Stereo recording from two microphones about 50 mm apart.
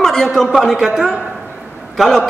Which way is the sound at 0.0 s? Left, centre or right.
Centre.